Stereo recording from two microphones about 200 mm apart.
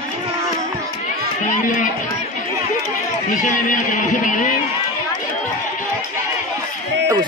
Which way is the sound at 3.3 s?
40° left (ahead or behind).